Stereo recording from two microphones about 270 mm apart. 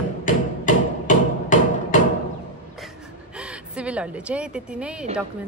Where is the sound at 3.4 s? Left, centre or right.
Centre.